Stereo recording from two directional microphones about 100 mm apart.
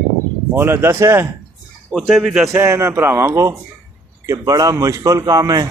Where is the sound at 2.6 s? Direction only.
25° right (ahead or behind).